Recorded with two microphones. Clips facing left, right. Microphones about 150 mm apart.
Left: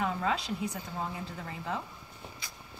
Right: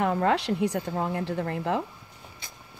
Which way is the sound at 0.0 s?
60° right (ahead or behind).